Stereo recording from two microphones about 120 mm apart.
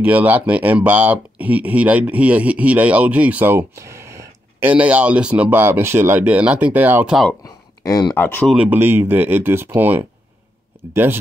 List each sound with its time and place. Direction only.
0.0 s speech: 15° right (ahead or behind)
4.6 s speech: 10° right (ahead or behind)
7.4 s a sound: 30° left (ahead or behind)
8.2 s speech: 15° left (ahead or behind)
8.5 s speech: 10° right (ahead or behind)